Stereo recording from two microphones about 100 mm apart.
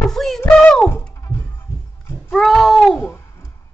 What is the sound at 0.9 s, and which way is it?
Music, 25° left (ahead or behind).